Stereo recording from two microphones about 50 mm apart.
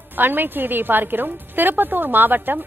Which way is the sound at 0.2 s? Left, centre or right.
Right.